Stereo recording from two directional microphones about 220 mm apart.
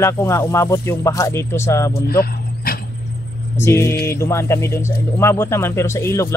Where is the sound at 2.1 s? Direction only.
45° left (ahead or behind).